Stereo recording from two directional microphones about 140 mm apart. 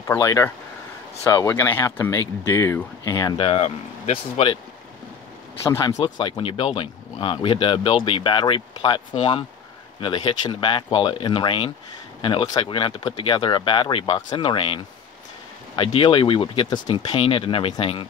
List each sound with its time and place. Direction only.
0.0 s speech: 25° left (ahead or behind)
3.3 s speech: 45° left (ahead or behind)
5.8 s speech: 30° left (ahead or behind)